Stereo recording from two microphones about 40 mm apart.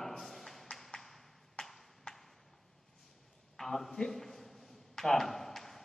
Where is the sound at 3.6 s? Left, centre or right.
Centre.